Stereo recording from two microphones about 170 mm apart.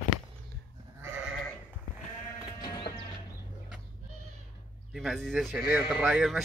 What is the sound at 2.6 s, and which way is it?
Music, 30° left (ahead or behind).